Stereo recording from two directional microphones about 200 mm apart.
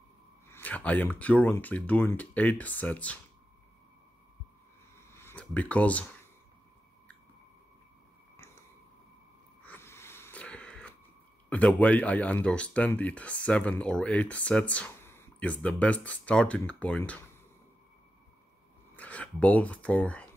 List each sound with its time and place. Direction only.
0.5 s speech: 10° left (ahead or behind)
5.1 s speech: 10° left (ahead or behind)
9.6 s wheeze: 10° left (ahead or behind)
11.4 s speech: 5° left (ahead or behind)
18.9 s speech: 5° left (ahead or behind)